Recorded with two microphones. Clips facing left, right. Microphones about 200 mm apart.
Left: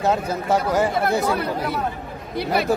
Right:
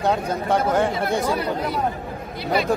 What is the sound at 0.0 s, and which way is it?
Speech, 5° left (ahead or behind).